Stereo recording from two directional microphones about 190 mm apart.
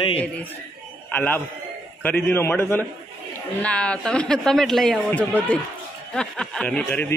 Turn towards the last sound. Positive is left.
turn(degrees=10)  # may be behind; listen again after turning